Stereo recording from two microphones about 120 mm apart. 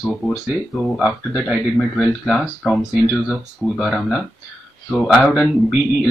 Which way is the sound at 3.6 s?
15° right (ahead or behind).